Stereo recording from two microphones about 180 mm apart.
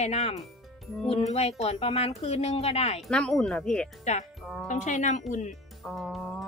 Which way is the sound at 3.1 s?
5° left (ahead or behind).